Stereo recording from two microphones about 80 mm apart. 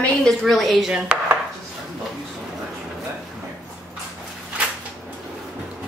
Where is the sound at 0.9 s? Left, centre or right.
Centre.